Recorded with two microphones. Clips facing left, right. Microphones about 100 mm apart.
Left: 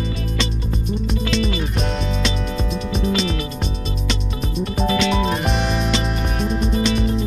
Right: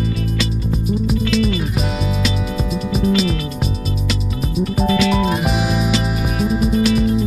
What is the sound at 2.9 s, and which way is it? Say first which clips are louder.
Music: right 4 dB; 5° right (ahead or behind).